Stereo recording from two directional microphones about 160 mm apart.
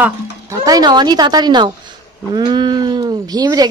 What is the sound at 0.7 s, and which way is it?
Speech, 25° right (ahead or behind).